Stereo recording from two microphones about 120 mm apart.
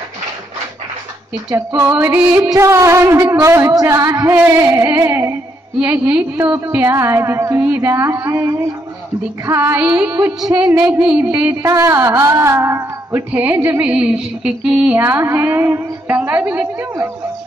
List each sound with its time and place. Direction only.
1.7 s a woman's voice: 15° right (ahead or behind)
2.5 s a woman's voice: 25° right (ahead or behind)
10.9 s a woman's voice: 10° right (ahead or behind)
11.6 s a woman's voice: 25° right (ahead or behind); by 15.0 s 10° right (ahead or behind)
15.0 s a woman's voice: 20° right (ahead or behind)